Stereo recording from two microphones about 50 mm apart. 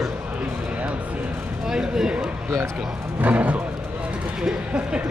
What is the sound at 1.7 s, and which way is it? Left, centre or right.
Speech, centre.